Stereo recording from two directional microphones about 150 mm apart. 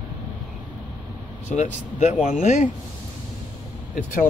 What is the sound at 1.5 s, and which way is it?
Speech, 50° left (ahead or behind).